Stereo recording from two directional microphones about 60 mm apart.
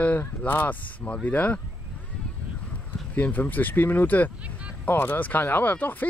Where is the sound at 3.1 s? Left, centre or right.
Left.